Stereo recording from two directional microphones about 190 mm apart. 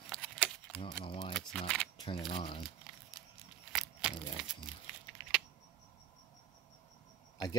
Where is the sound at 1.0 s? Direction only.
25° left (ahead or behind).